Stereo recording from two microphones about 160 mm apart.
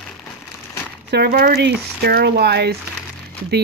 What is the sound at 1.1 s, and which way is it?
Speech, 85° right.